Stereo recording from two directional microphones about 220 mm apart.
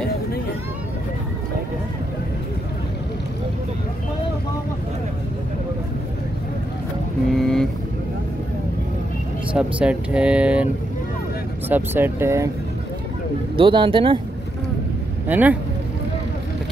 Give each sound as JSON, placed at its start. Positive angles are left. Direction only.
{"t": 7.3, "sound": "vehicle", "side_deg": 0}
{"t": 9.6, "sound": "speech", "side_deg": -5}
{"t": 11.7, "sound": "speech", "side_deg": -10}
{"t": 13.6, "sound": "speech", "side_deg": -20}
{"t": 15.2, "sound": "speech", "side_deg": -10}